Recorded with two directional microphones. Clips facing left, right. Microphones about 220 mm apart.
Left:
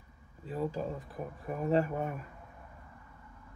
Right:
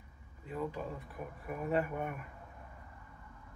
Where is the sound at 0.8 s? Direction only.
30° left (ahead or behind).